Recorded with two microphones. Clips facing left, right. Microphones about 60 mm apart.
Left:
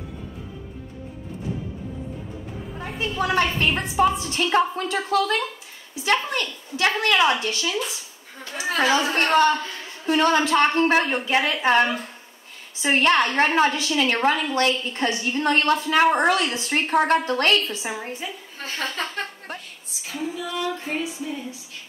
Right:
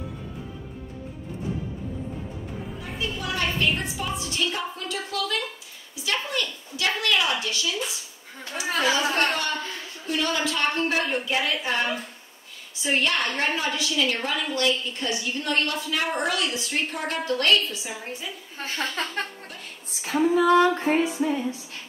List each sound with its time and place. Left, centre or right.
3.0 s a woman's voice: left
20.1 s music: right